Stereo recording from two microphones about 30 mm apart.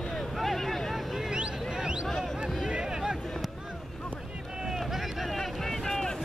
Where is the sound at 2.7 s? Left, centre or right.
Right.